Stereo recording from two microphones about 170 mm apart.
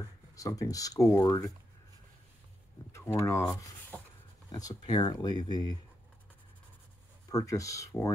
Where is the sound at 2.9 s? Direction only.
15° left (ahead or behind).